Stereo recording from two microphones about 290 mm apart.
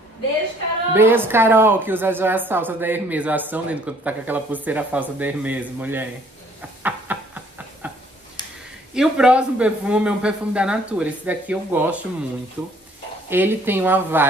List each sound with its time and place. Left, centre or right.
0.9 s a woman's voice: centre
6.8 s a sound: centre
8.9 s a man's voice: centre
13.3 s a woman's voice: centre